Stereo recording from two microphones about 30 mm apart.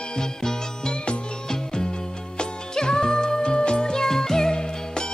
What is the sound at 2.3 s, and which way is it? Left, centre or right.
Music, left.